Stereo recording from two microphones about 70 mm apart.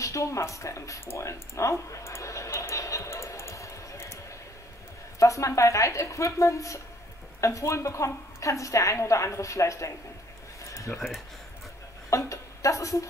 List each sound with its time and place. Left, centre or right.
0.0 s speech: left
2.7 s music: left
5.2 s a woman's voice: left
12.1 s a sound: left